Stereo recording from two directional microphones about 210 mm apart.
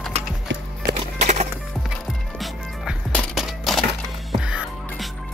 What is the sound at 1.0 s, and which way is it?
Music, 35° right (ahead or behind).